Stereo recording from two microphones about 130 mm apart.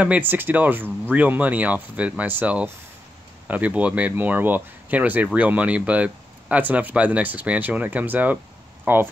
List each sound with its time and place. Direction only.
0.0 s speech: 15° right (ahead or behind)